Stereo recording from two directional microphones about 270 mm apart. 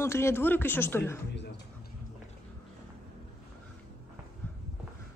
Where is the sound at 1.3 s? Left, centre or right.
Left.